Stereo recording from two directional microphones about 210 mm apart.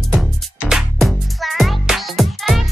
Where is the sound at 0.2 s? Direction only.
Centre (ahead or behind).